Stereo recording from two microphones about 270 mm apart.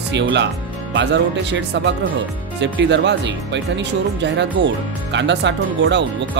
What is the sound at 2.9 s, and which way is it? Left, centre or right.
Speech, right.